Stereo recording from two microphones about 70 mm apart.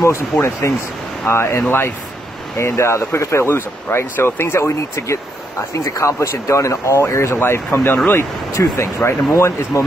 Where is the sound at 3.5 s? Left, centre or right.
Left.